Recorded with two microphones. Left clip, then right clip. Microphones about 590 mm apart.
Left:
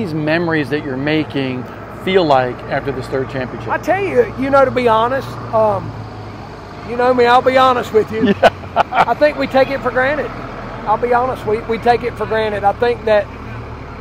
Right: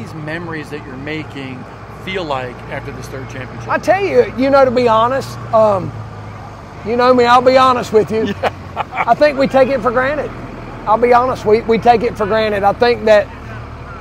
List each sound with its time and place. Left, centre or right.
0.0 s speech: left
3.7 s speech: right
7.0 s speech: right
8.3 s speech: left
9.2 s speech: right